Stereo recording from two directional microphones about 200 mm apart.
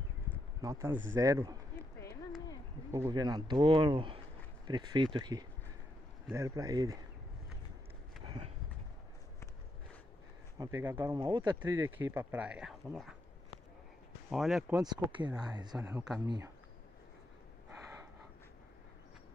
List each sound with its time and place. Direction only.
0.6 s speech: 15° right (ahead or behind)
2.9 s speech: 15° right (ahead or behind)
8.3 s a sound: 30° right (ahead or behind)
10.6 s speech: 10° right (ahead or behind)
11.1 s speech: 25° right (ahead or behind)
11.7 s speech: 10° right (ahead or behind)
14.3 s speech: centre (ahead or behind)
15.0 s speech: 25° right (ahead or behind)
15.9 s speech: 5° right (ahead or behind)
16.3 s speech: 15° right (ahead or behind)